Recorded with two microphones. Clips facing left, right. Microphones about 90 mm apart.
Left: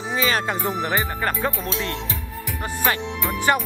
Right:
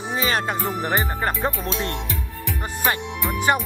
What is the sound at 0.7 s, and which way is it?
Speech, 20° right (ahead or behind).